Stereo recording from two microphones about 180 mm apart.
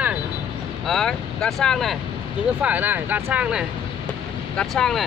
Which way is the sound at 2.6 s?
10° right (ahead or behind).